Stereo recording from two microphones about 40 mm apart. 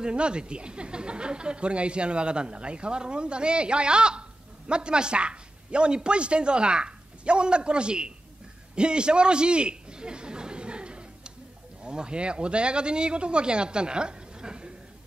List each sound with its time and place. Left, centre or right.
0.0 s a man's voice: right